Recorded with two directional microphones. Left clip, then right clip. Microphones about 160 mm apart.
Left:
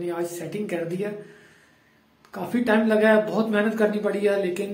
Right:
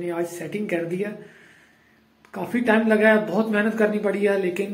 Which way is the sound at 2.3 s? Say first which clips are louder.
Right 1 dB; 10° right (ahead or behind).